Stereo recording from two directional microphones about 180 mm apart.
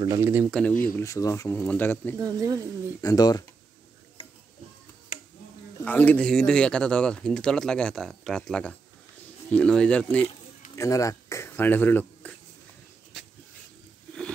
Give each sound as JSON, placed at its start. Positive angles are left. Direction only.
{"t": 0.0, "sound": "speech", "side_deg": -15}
{"t": 0.5, "sound": "speech", "side_deg": 5}
{"t": 2.1, "sound": "speech", "side_deg": -20}
{"t": 3.0, "sound": "speech", "side_deg": 20}
{"t": 5.8, "sound": "speech", "side_deg": 10}
{"t": 10.8, "sound": "speech", "side_deg": 20}